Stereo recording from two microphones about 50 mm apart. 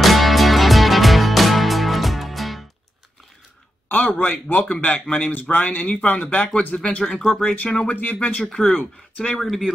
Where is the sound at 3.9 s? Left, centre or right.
Left.